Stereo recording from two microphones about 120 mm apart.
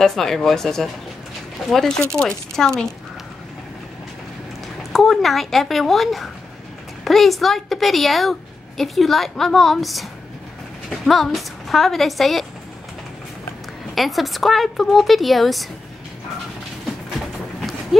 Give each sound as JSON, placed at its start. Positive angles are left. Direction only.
{"t": 0.0, "sound": "a woman's voice", "side_deg": 5}
{"t": 4.9, "sound": "a woman's voice", "side_deg": 0}
{"t": 13.9, "sound": "a woman's voice", "side_deg": 0}